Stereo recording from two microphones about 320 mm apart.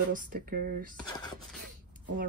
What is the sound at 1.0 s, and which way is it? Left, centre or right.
Speech, centre.